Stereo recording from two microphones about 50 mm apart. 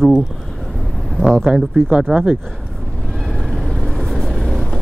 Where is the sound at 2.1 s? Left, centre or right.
Centre.